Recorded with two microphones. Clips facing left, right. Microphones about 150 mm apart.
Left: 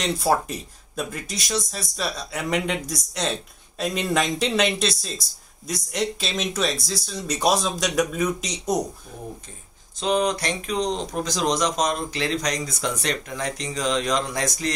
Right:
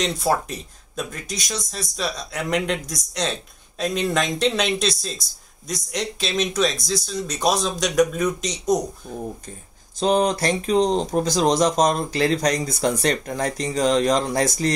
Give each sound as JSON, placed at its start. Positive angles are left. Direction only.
{"t": 0.0, "sound": "speech", "side_deg": 5}
{"t": 9.9, "sound": "speech", "side_deg": -35}